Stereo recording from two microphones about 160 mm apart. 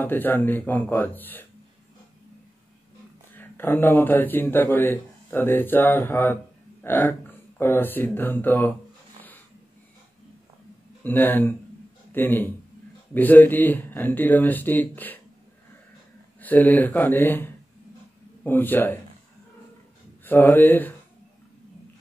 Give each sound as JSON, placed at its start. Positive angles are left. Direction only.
{"t": 0.0, "sound": "speech", "side_deg": 10}
{"t": 3.3, "sound": "speech", "side_deg": 15}
{"t": 11.1, "sound": "a man's voice", "side_deg": 10}
{"t": 16.3, "sound": "speech", "side_deg": 10}
{"t": 20.2, "sound": "speech", "side_deg": 10}